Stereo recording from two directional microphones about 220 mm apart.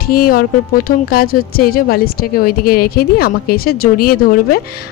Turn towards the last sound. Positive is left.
turn(degrees=40)  # may be behind; listen again after turning